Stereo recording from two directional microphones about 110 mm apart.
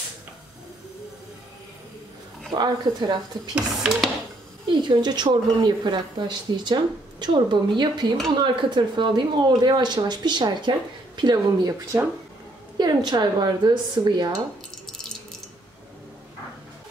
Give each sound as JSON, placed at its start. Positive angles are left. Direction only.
{"t": 2.5, "sound": "speech", "side_deg": -40}
{"t": 3.5, "sound": "speech", "side_deg": -5}
{"t": 4.8, "sound": "speech", "side_deg": -40}
{"t": 11.9, "sound": "speech", "side_deg": -25}
{"t": 12.7, "sound": "speech", "side_deg": -40}
{"t": 14.9, "sound": "water tap", "side_deg": 5}